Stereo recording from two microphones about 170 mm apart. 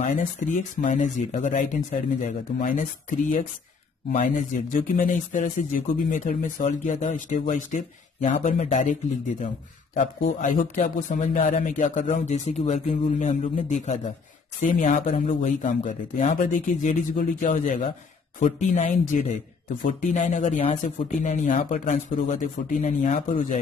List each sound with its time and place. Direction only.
0.0 s speech: 45° left (ahead or behind)
9.9 s speech: 50° left (ahead or behind)